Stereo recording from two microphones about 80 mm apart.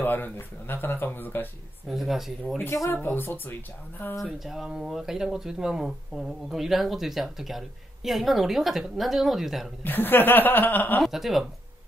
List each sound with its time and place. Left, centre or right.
0.0 s speech: left
1.9 s speech: centre
2.9 s speech: left
4.2 s speech: centre
9.8 s speech: left
11.0 s speech: centre